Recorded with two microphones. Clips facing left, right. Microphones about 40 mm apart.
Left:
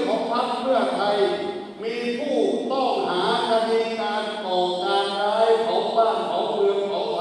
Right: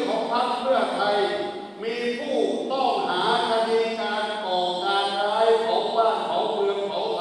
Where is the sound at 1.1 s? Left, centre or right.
Centre.